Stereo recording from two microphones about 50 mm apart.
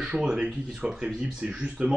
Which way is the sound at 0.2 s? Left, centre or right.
Centre.